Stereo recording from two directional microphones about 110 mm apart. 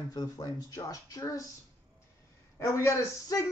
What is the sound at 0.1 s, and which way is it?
Speech, 35° left (ahead or behind).